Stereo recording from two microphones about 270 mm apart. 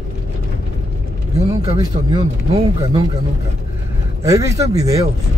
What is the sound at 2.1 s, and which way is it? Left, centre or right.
Speech, centre.